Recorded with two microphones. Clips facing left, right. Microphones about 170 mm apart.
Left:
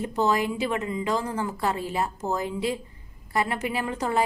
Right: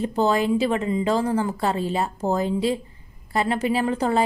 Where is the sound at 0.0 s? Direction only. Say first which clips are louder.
Right 3 dB; 30° right (ahead or behind).